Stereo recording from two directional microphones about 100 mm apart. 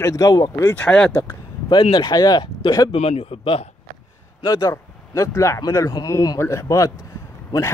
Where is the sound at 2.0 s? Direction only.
40° left (ahead or behind).